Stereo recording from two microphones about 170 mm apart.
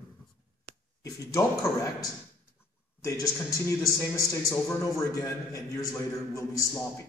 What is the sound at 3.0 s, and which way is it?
A man's voice, 20° left (ahead or behind).